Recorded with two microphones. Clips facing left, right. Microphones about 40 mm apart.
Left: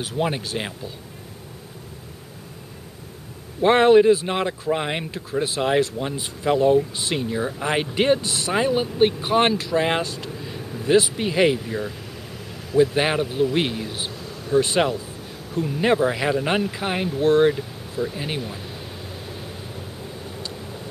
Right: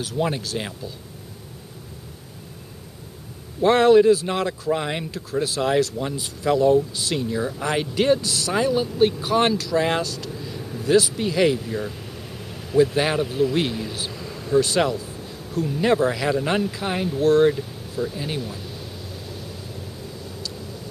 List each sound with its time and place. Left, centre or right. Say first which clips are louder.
0.0 s speech: even; left
3.6 s speech: even; left
12.9 s speech: even; left
14.1 s a sound: right 1 dB; left
14.5 s speech: even; left